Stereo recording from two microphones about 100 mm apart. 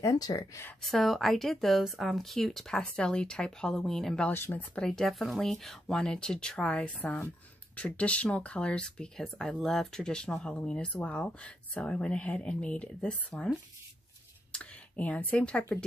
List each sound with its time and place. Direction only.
0.0 s speech: 35° left (ahead or behind)
0.8 s speech: centre (ahead or behind)
4.3 s speech: 20° left (ahead or behind)
4.8 s speech: 5° left (ahead or behind)